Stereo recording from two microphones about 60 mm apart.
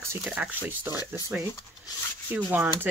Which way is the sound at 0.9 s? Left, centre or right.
Left.